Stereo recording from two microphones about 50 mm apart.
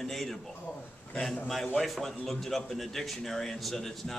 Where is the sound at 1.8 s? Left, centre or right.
Centre.